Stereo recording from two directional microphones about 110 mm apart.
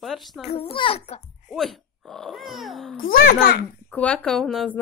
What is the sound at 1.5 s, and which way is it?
Speech, centre (ahead or behind).